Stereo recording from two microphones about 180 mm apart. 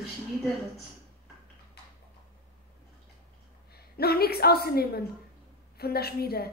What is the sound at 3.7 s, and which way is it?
A woman's voice, 60° left (ahead or behind).